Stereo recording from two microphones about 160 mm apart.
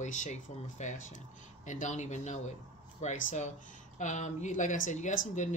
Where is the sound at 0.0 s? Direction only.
50° left (ahead or behind).